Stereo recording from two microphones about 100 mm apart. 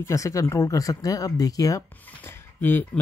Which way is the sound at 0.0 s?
30° left (ahead or behind).